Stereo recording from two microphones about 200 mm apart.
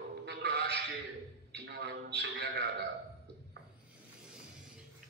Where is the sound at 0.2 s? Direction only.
55° right (ahead or behind).